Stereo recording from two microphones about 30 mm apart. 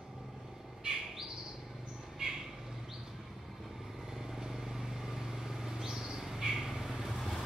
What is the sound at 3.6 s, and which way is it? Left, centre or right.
Vehicle, centre.